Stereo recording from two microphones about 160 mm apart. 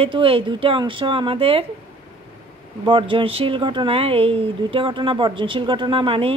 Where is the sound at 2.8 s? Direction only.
30° right (ahead or behind).